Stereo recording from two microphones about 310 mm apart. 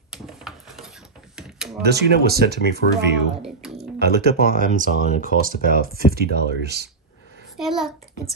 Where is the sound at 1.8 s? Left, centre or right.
Right.